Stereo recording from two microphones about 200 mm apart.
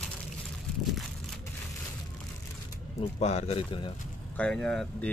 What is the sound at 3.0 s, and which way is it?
Speech, 30° left (ahead or behind).